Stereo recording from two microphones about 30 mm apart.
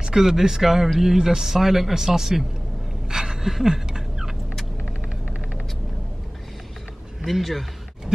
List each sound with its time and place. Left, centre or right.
0.1 s speech: centre
3.1 s a sound: centre
4.8 s hum: centre
7.2 s speech: centre